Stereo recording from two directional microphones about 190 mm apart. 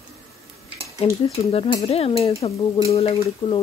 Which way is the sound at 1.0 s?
30° left (ahead or behind).